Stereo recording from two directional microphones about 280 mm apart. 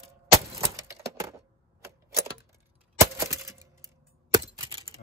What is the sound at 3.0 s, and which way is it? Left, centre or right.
Crack, centre.